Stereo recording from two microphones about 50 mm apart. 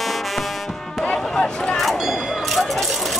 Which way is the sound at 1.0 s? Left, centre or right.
Centre.